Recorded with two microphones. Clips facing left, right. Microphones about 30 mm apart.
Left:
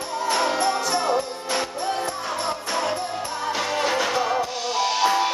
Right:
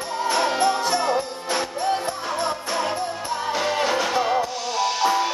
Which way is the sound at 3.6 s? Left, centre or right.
Centre.